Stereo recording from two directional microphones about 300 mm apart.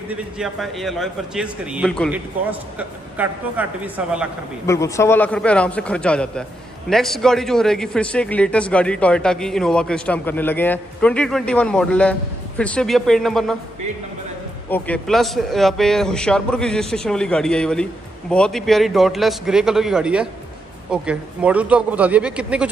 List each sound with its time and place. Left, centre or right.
0.1 s a man's voice: centre
4.6 s a man's voice: centre
14.7 s a man's voice: centre